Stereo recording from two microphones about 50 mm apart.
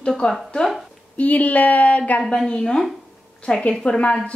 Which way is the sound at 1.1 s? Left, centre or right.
Left.